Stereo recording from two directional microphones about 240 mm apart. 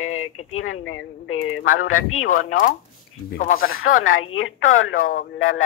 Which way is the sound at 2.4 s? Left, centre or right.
Left.